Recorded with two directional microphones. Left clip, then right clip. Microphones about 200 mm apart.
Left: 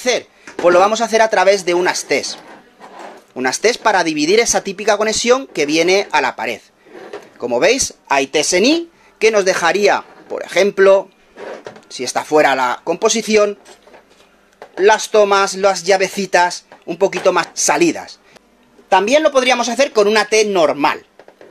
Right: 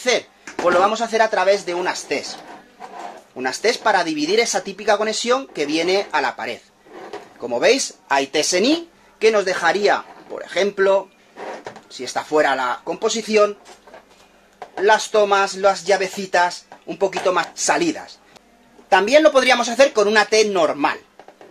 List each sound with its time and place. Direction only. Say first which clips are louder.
0.7 s speech: left 5 dB; 30° left (ahead or behind)
3.3 s speech: left 5 dB; 35° left (ahead or behind)
14.8 s speech: left 4 dB; 30° left (ahead or behind)